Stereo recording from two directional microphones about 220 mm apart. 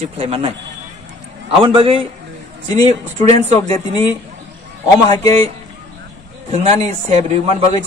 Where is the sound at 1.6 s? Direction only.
25° right (ahead or behind).